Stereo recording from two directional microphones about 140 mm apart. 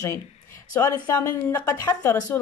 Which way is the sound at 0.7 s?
20° left (ahead or behind).